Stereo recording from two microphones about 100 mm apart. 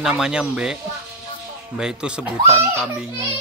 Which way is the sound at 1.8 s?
10° right (ahead or behind).